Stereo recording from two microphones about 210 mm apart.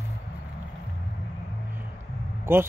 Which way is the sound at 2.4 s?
10° right (ahead or behind).